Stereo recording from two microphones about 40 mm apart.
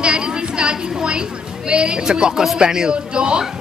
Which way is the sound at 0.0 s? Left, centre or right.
Right.